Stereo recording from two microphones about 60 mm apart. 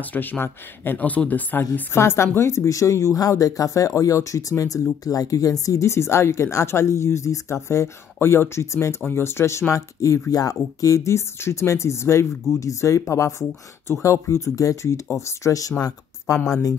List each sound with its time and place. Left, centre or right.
0.0 s speech: left
1.7 s a woman's voice: left
5.0 s speech: left
5.8 s speech: left
12.5 s a woman's voice: left
16.3 s speech: left